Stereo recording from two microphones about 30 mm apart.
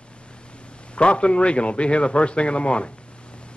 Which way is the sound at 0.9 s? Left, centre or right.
Left.